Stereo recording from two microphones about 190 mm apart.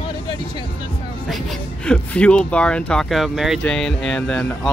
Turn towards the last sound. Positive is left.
turn(degrees=5)  # may be behind; listen again after turning